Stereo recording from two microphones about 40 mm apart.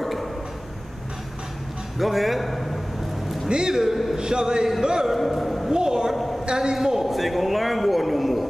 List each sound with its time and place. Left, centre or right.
0.0 s tick-tock: centre
2.0 s a man's voice: centre
3.4 s a man's voice: centre
3.9 s a man's voice: centre
4.2 s a man's voice: centre
5.1 s a man's voice: centre
5.7 s a man's voice: centre
7.1 s a man's voice: centre